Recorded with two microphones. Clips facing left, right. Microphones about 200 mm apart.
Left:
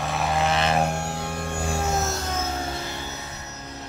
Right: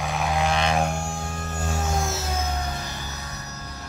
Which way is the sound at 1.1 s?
70° left (ahead or behind).